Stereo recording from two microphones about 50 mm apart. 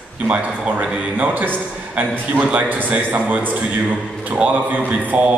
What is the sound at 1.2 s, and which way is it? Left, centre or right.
A man's voice, right.